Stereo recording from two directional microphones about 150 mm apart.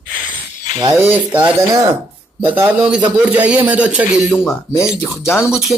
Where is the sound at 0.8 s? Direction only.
25° right (ahead or behind).